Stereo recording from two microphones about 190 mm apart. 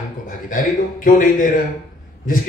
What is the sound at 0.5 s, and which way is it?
A man's voice, 45° left (ahead or behind).